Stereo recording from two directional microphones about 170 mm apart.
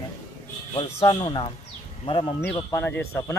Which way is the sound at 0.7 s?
40° left (ahead or behind).